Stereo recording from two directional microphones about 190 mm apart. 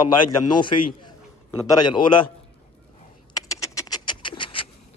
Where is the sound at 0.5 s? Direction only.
25° left (ahead or behind).